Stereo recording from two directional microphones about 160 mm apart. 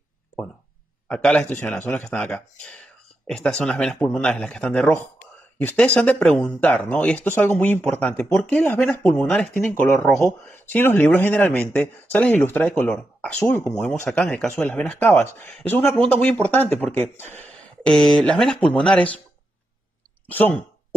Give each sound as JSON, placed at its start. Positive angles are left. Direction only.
{"t": 1.0, "sound": "speech", "side_deg": 5}
{"t": 20.2, "sound": "speech", "side_deg": 10}